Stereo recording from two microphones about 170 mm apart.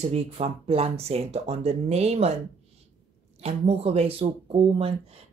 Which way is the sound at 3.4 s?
35° right (ahead or behind).